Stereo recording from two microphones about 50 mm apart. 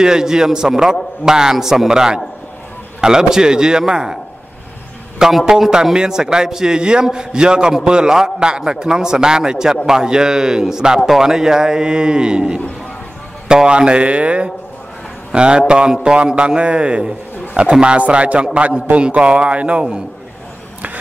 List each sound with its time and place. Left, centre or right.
0.0 s a man's voice: centre
5.4 s a man's voice: centre